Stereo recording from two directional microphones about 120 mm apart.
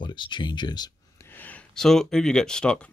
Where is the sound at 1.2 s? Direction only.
15° left (ahead or behind).